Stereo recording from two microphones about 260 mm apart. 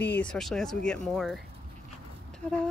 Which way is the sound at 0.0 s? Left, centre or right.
Centre.